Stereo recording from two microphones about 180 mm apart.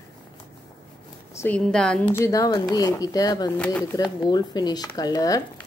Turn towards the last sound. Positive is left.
turn(degrees=20)  # may be behind; listen again after turning